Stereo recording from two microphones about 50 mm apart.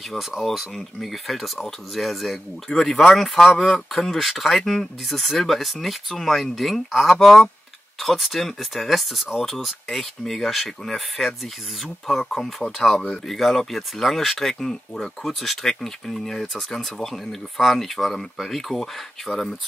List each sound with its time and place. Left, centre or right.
0.1 s speech: centre